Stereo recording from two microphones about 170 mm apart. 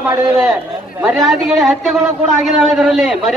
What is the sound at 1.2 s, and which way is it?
A man's voice, centre (ahead or behind).